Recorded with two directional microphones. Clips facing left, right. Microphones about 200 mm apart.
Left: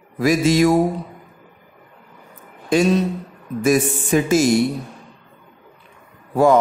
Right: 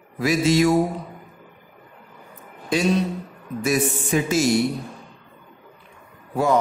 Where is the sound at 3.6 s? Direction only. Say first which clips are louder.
Left 5 dB; 50° left (ahead or behind).